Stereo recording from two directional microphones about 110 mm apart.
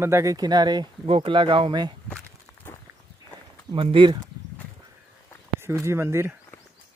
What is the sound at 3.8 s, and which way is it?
Speech, 50° right (ahead or behind).